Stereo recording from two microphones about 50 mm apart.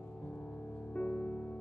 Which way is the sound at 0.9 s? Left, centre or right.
Left.